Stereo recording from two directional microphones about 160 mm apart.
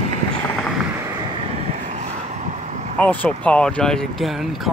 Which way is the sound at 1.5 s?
45° right (ahead or behind).